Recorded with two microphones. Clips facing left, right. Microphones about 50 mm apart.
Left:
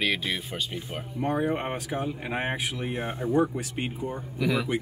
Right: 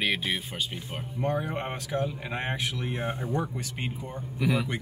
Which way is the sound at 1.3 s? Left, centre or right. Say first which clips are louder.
Left 4 dB; left.